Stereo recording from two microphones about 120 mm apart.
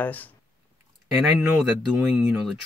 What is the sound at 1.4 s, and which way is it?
Speech, 5° right (ahead or behind).